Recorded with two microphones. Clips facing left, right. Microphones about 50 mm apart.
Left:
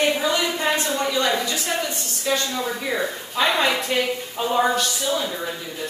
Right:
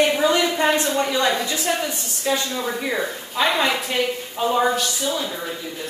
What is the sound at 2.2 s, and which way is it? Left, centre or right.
A woman's voice, centre.